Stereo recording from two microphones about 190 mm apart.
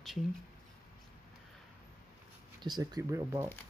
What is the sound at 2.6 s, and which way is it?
Speech, 20° right (ahead or behind).